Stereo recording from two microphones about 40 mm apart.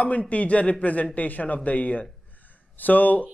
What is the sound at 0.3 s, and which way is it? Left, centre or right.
Speech, left.